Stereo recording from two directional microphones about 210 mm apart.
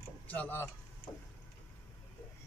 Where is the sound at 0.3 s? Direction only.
10° left (ahead or behind).